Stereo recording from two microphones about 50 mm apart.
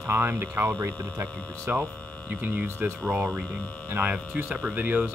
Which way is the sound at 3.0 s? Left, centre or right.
Right.